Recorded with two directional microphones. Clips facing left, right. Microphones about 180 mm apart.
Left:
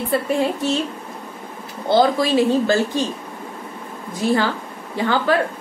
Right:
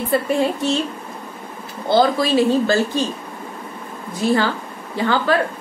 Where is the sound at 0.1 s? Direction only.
Centre (ahead or behind).